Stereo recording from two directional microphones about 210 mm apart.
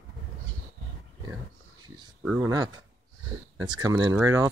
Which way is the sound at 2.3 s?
15° right (ahead or behind).